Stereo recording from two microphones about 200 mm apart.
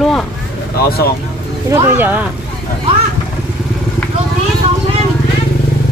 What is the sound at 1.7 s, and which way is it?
Speech, 10° right (ahead or behind).